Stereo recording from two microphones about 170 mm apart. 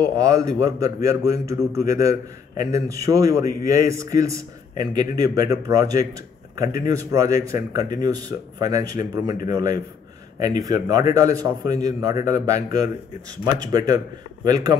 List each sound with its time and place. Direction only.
0.0 s a man's voice: 20° right (ahead or behind)